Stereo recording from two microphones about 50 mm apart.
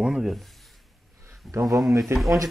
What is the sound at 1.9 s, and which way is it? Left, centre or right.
Speech, right.